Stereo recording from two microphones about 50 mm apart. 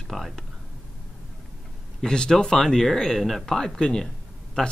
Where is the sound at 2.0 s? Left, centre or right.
Centre.